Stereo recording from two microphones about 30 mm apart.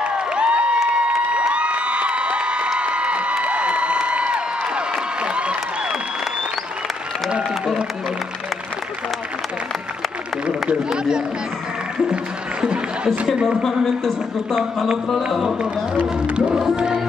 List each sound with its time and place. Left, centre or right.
0.0 s a sound: right
1.5 s cheering: right
2.8 s crowd: right
13.5 s speech: centre
16.7 s music: right